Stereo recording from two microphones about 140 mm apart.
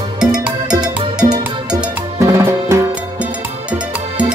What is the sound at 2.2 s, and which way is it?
Music, 20° right (ahead or behind).